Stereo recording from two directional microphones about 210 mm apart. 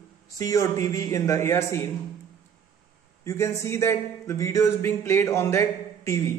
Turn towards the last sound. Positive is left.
turn(degrees=15)  # may be behind; listen again after turning